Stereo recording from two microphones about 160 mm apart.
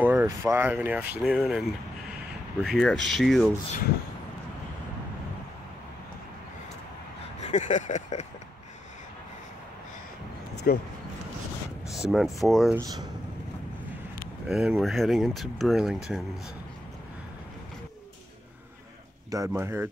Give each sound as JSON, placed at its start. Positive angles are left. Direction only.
{"t": 0.0, "sound": "speech", "side_deg": -10}
{"t": 7.4, "sound": "a sound", "side_deg": 50}
{"t": 10.7, "sound": "speech", "side_deg": 70}
{"t": 11.9, "sound": "speech", "side_deg": 0}
{"t": 12.7, "sound": "speech", "side_deg": -25}
{"t": 14.5, "sound": "speech", "side_deg": 0}
{"t": 19.3, "sound": "speech", "side_deg": -20}